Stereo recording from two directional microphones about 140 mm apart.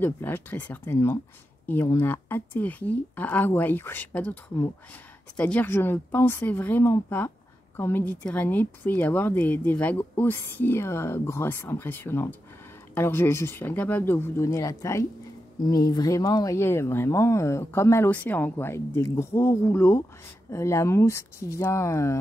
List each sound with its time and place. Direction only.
0.0 s speech: 15° left (ahead or behind)